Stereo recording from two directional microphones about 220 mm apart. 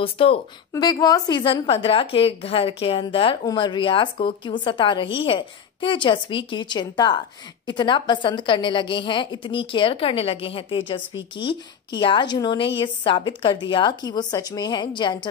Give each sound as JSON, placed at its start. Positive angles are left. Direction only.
{"t": 0.0, "sound": "a woman's voice", "side_deg": 25}